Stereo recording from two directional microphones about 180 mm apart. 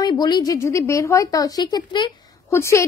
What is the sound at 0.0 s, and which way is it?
Speech, 25° left (ahead or behind).